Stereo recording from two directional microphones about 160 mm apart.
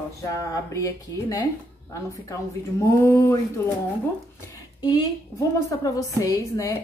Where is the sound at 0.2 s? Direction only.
20° left (ahead or behind).